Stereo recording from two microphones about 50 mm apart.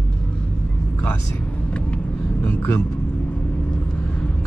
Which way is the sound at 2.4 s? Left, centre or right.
Left.